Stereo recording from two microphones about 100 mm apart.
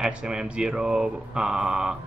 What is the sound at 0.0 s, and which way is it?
Speech, 10° right (ahead or behind).